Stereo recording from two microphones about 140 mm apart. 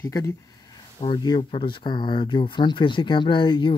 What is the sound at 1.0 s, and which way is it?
Speech, 35° left (ahead or behind).